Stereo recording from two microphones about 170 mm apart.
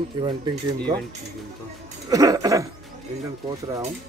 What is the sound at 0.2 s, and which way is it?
Speech, 30° right (ahead or behind).